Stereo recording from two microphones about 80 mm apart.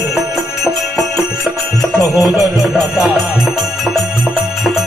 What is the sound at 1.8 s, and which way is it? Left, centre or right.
Music, left.